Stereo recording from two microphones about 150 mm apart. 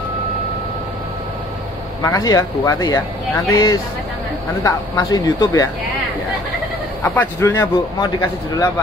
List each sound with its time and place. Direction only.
2.0 s speech: 20° left (ahead or behind)
7.0 s speech: 15° left (ahead or behind)
7.5 s speech: 25° left (ahead or behind)